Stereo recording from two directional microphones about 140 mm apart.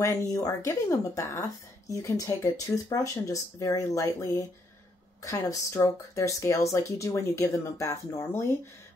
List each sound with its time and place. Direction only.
0.0 s speech: 25° left (ahead or behind)